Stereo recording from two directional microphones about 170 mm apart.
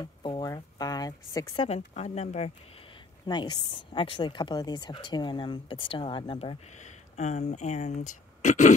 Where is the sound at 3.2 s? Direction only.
25° left (ahead or behind).